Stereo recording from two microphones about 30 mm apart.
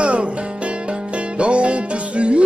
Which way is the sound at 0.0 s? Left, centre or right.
Right.